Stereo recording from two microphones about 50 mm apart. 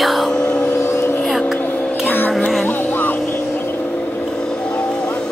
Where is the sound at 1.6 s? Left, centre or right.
Left.